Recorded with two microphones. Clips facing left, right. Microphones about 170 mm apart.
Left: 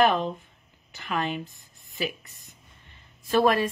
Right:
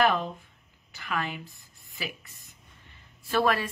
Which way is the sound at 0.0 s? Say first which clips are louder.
Left 3 dB; 25° left (ahead or behind).